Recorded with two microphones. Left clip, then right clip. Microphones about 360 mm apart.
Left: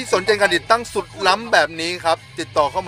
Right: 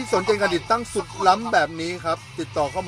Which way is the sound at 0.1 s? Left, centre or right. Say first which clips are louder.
Left 4 dB; left.